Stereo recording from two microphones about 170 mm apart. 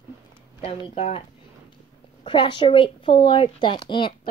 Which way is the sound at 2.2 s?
30° left (ahead or behind).